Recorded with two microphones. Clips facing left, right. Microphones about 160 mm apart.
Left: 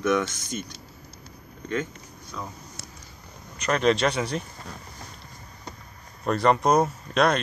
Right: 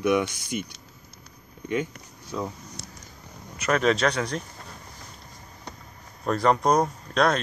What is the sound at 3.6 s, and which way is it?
Speech, 5° right (ahead or behind).